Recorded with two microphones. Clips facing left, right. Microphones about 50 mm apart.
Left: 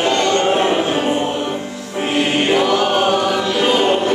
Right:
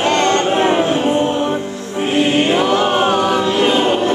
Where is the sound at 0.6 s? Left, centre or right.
Right.